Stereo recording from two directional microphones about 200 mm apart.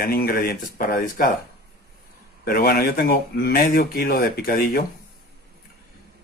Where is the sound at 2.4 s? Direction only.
50° left (ahead or behind).